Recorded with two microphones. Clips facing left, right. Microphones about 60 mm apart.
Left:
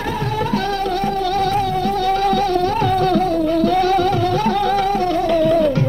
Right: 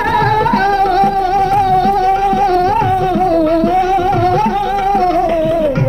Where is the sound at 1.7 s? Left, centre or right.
Right.